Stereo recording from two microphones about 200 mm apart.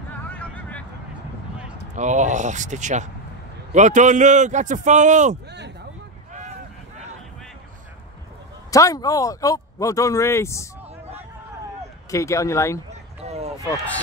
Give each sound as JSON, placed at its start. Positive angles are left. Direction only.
{"t": 0.1, "sound": "vehicle", "side_deg": 5}
{"t": 2.0, "sound": "a man's voice", "side_deg": -35}
{"t": 8.6, "sound": "speech", "side_deg": 15}
{"t": 12.1, "sound": "speech", "side_deg": 15}
{"t": 13.2, "sound": "run", "side_deg": -30}